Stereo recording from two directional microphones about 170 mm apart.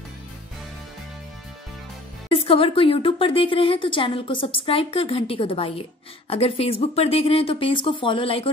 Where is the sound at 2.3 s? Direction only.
35° left (ahead or behind).